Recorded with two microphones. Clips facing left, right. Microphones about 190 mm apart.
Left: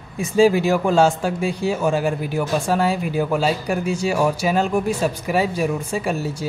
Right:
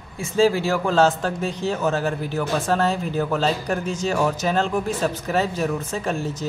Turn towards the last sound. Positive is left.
turn(degrees=10)  # may be behind; listen again after turning